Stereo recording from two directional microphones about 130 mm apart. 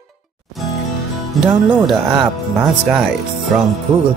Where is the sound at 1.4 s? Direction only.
5° right (ahead or behind).